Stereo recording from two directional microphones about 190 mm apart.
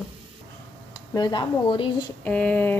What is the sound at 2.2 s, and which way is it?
Speech, 5° left (ahead or behind).